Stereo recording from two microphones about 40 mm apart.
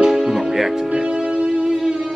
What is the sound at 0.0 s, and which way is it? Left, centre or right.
Music, centre.